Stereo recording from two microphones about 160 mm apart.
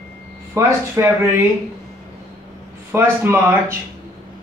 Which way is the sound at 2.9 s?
15° right (ahead or behind).